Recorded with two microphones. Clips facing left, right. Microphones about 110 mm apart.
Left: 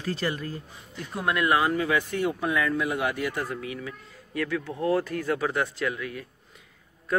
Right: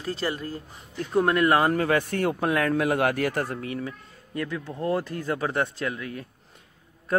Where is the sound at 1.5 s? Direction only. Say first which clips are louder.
Right 2 dB; 45° right (ahead or behind).